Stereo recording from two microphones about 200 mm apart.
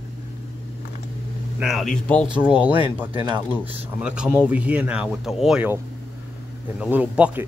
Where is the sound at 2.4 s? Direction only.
5° right (ahead or behind).